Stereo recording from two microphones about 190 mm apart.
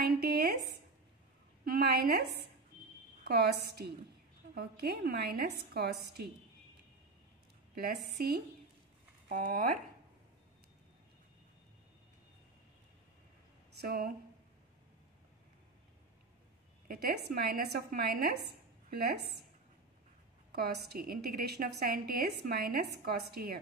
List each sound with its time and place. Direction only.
0.0 s a sound: 55° right (ahead or behind)
1.6 s a woman's voice: 55° right (ahead or behind)
7.7 s a woman's voice: 55° right (ahead or behind)
13.7 s speech: 50° right (ahead or behind)
16.8 s a woman's voice: 50° right (ahead or behind)
20.5 s a woman's voice: 55° right (ahead or behind)